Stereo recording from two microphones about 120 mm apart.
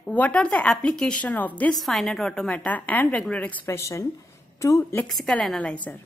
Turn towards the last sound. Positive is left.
turn(degrees=5)  # may be behind; listen again after turning